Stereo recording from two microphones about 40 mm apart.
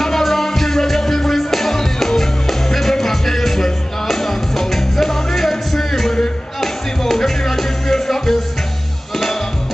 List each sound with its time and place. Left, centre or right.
0.0 s music: centre